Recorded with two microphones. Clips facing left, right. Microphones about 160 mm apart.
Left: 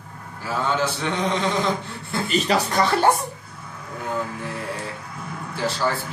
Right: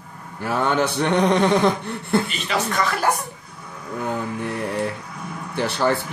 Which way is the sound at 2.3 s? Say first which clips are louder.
Left 3 dB; 35° left (ahead or behind).